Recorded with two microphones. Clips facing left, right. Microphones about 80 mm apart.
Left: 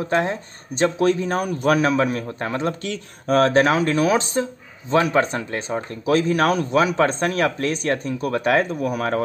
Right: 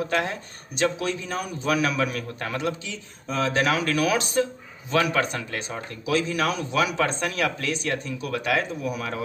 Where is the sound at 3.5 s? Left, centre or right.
Left.